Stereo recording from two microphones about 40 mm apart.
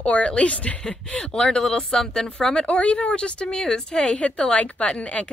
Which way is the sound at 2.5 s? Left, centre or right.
Left.